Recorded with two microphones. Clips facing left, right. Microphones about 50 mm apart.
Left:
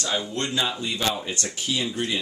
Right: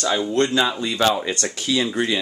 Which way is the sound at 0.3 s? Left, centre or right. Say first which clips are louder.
Right 7 dB; right.